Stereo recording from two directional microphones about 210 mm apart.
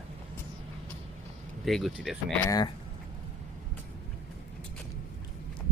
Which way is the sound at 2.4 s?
15° left (ahead or behind).